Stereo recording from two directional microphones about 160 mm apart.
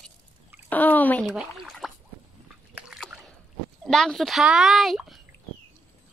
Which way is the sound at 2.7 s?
5° right (ahead or behind).